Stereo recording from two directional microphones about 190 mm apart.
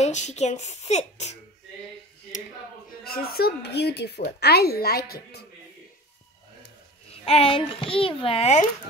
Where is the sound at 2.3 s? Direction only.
40° left (ahead or behind).